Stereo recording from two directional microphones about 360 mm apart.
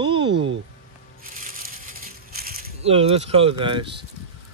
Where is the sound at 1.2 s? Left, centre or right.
Right.